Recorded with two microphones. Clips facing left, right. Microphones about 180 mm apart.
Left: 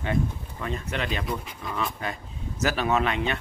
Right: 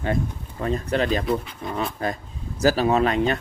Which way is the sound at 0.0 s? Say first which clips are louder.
Right 2 dB; 40° right (ahead or behind).